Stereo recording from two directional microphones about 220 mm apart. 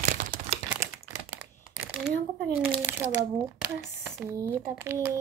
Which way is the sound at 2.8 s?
10° right (ahead or behind).